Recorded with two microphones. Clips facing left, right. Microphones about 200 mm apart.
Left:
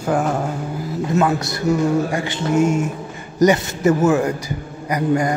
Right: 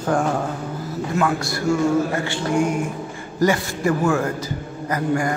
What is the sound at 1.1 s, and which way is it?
A man's voice, 20° left (ahead or behind).